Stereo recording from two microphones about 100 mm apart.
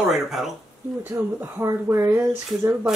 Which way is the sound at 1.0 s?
25° right (ahead or behind).